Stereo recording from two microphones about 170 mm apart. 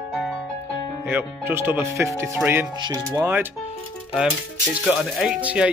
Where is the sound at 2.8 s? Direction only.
25° right (ahead or behind).